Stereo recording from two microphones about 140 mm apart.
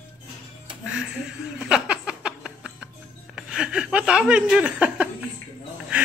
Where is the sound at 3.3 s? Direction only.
5° right (ahead or behind).